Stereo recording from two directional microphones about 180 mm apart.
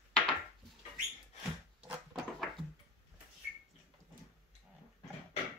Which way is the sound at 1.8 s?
Centre (ahead or behind).